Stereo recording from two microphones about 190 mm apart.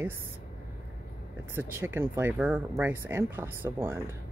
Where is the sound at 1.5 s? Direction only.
10° right (ahead or behind).